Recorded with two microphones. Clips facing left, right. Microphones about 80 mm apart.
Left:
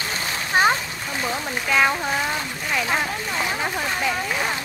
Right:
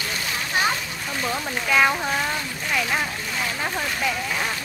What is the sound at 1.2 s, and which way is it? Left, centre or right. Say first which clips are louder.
Speech: even; centre.